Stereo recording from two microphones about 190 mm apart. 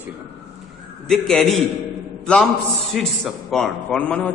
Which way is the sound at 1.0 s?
5° left (ahead or behind).